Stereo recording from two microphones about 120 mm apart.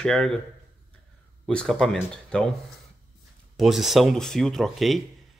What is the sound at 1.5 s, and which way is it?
Speech, 5° left (ahead or behind).